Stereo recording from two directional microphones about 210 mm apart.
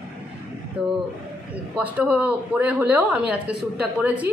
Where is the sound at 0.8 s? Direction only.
5° right (ahead or behind).